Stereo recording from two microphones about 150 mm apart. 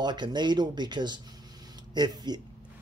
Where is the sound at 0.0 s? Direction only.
30° right (ahead or behind).